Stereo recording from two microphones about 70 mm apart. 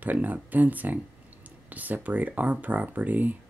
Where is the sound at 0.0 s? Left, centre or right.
Right.